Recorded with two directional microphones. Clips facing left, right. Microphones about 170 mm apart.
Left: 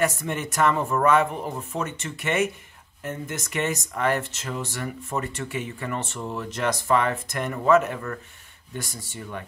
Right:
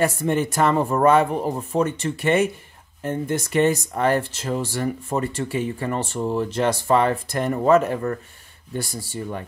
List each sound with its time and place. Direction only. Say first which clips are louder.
0.0 s speech: right 5 dB; 30° right (ahead or behind)